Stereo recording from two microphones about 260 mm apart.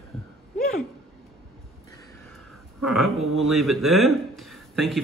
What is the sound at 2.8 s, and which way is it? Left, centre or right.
A man's voice, centre.